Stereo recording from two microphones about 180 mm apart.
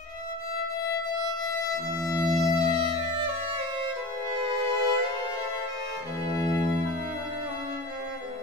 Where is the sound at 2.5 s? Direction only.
30° right (ahead or behind).